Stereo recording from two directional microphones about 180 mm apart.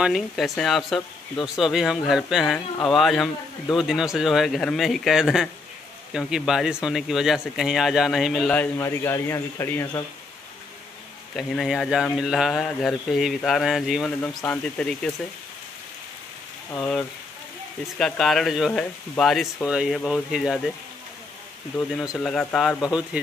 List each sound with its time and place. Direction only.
0.0 s a man's voice: centre (ahead or behind)
8.7 s speech: 15° left (ahead or behind)
11.3 s a man's voice: centre (ahead or behind)
16.7 s a man's voice: 5° left (ahead or behind)
22.2 s a man's voice: 5° left (ahead or behind)